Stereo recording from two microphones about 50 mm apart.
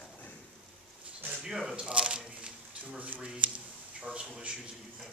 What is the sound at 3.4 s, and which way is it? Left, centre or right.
A man's voice, right.